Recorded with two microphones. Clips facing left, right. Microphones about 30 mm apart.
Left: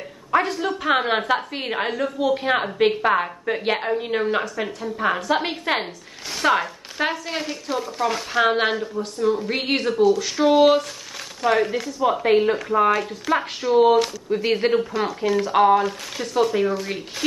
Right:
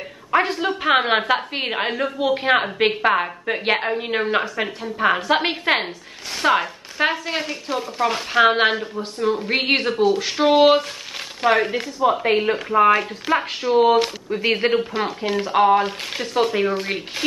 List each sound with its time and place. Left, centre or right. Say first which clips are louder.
0.3 s a woman's voice: right 1 dB; right
6.4 s a woman's voice: right 1 dB; centre; by 11.9 s right
12.0 s a woman's voice: even; centre; by 17.0 s right